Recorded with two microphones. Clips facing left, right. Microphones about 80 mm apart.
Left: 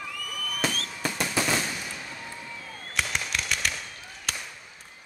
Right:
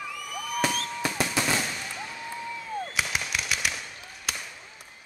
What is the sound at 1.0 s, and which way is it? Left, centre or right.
Fireworks, centre.